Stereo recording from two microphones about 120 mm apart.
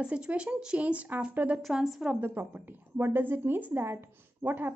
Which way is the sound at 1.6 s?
Centre (ahead or behind).